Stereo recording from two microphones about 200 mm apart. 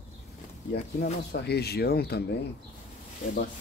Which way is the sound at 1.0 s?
50° left (ahead or behind).